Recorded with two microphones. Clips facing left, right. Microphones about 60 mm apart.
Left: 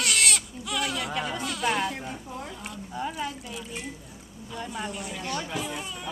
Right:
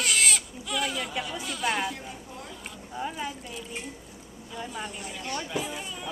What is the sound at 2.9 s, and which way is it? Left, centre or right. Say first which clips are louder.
Speech: left 1 dB; centre.